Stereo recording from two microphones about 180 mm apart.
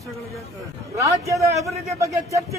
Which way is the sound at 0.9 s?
15° right (ahead or behind).